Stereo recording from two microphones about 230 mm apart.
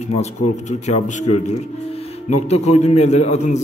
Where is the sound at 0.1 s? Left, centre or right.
Left.